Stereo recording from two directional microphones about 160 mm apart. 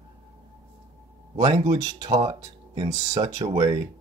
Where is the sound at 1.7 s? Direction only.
25° right (ahead or behind).